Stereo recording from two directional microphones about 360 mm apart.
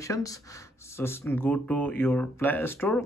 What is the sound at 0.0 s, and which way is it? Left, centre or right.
Speech, centre.